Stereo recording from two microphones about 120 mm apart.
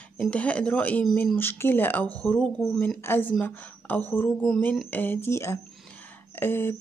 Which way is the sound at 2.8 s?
15° left (ahead or behind).